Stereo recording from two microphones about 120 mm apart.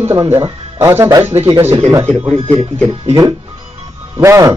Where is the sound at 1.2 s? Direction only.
55° right (ahead or behind).